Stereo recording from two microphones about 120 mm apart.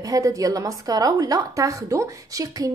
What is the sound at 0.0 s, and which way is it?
A woman's voice, 30° right (ahead or behind).